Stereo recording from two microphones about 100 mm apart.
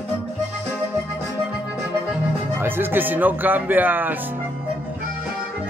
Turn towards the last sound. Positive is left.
turn(degrees=-20)  # may be behind; listen again after turning